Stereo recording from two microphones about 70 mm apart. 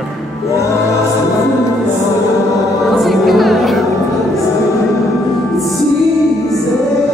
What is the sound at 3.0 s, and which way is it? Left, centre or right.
Music, centre.